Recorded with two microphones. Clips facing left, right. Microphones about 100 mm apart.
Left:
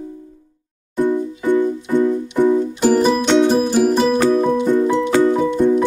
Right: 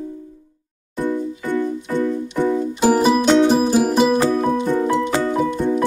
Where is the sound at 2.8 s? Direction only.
5° right (ahead or behind).